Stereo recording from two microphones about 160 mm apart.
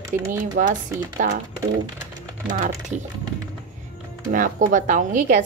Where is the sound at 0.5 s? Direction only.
55° right (ahead or behind).